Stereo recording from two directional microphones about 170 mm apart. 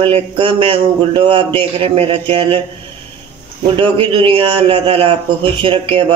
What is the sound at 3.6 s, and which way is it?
A man's voice, 30° right (ahead or behind).